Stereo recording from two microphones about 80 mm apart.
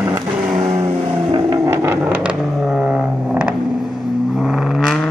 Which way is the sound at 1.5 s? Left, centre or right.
Right.